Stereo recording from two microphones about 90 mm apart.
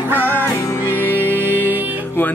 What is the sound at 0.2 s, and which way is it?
Music, 25° left (ahead or behind).